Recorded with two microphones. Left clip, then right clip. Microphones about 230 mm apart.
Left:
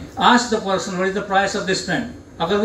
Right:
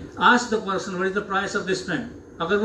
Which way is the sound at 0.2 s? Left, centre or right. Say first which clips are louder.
Left 3 dB; centre.